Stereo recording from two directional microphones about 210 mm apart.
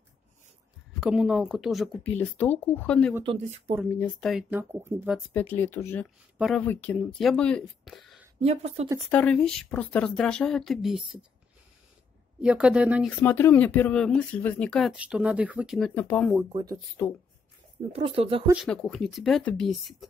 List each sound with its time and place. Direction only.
1.0 s speech: 5° right (ahead or behind)
3.3 s speech: 30° right (ahead or behind)
3.9 s speech: 5° left (ahead or behind)
5.3 s speech: 10° left (ahead or behind)
6.3 s speech: centre (ahead or behind)
8.4 s speech: 30° right (ahead or behind)
9.0 s speech: 5° left (ahead or behind)
12.4 s speech: 5° right (ahead or behind)
13.2 s speech: 10° left (ahead or behind)
15.9 s speech: 10° left (ahead or behind)
17.0 s speech: 15° left (ahead or behind)
17.9 s speech: 30° right (ahead or behind)
18.5 s speech: centre (ahead or behind)